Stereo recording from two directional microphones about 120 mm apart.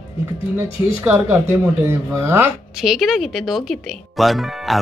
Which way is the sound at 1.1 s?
20° right (ahead or behind).